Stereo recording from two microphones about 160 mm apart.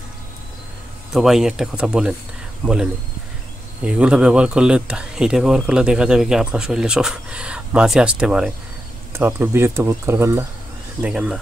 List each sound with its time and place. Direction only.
1.1 s speech: 5° right (ahead or behind)